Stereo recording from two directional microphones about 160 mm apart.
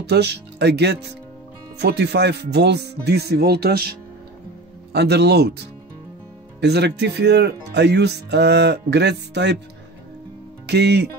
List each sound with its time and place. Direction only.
0.0 s speech: 90° right
4.9 s speech: 90° right
6.6 s speech: 90° right
10.7 s speech: 90° right